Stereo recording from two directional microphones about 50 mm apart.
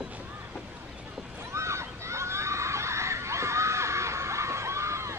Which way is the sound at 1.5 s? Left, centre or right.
Right.